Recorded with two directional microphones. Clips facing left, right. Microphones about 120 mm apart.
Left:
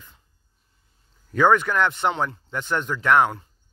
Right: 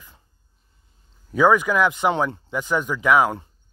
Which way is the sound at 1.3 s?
10° right (ahead or behind).